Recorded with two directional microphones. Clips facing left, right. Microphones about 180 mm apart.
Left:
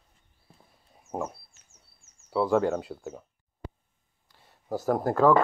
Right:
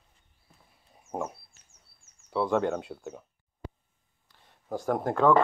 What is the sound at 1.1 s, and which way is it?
Fowl, 5° left (ahead or behind).